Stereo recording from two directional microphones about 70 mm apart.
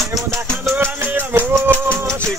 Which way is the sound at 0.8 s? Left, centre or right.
Right.